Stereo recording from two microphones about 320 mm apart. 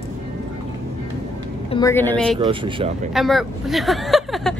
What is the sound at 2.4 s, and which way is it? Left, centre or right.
Speech, centre.